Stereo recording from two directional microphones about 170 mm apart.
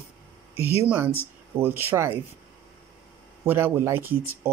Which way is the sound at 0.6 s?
35° left (ahead or behind).